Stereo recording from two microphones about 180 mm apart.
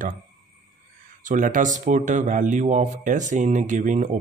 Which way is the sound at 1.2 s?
45° right (ahead or behind).